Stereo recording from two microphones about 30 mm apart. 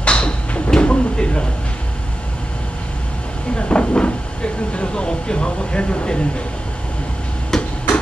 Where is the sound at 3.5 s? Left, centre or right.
Left.